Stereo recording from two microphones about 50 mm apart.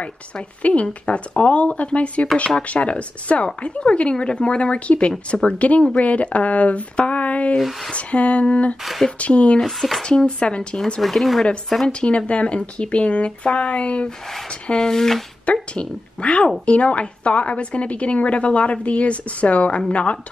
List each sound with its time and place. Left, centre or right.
0.6 s a woman's voice: left
7.5 s speech: centre
7.9 s a woman's voice: left
8.8 s speech: centre
9.2 s a woman's voice: left
9.6 s speech: centre
10.0 s a woman's voice: centre
11.0 s speech: centre
11.9 s a woman's voice: left
14.7 s speech: centre
15.4 s a woman's voice: left